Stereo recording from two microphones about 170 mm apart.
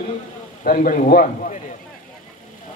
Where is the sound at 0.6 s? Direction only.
50° left (ahead or behind).